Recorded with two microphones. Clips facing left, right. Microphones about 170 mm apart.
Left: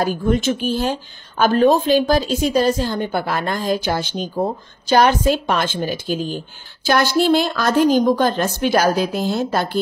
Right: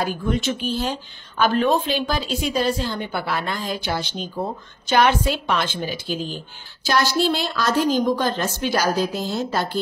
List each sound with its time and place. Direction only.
0.0 s a woman's voice: 45° left (ahead or behind)